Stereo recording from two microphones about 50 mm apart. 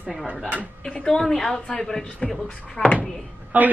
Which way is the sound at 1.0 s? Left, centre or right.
Centre.